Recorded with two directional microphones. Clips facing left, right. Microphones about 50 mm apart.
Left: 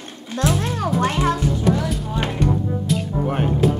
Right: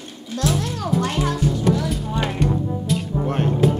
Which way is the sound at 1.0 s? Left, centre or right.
Left.